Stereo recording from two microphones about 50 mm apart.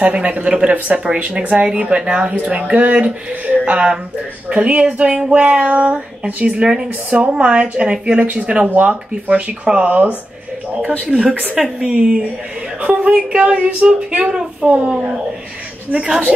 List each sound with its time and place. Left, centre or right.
0.0 s a woman's voice: right